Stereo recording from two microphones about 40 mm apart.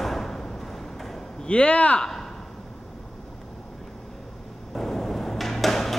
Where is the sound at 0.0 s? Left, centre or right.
Centre.